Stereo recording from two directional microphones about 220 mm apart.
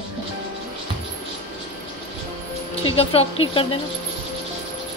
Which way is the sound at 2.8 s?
25° left (ahead or behind).